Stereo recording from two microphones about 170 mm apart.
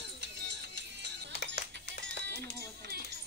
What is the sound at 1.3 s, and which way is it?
Music, 70° left (ahead or behind).